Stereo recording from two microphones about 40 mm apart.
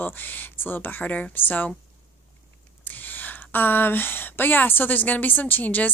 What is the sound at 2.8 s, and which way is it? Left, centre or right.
Speech, left.